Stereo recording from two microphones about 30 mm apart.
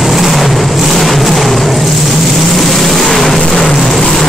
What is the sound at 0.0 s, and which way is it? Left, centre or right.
Vehicle, centre.